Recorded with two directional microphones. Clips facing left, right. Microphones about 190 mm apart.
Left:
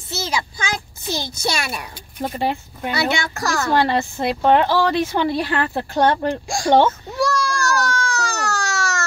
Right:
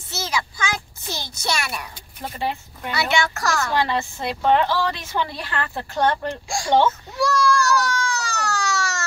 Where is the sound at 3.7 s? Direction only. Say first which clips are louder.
Left 4 dB; 45° left (ahead or behind).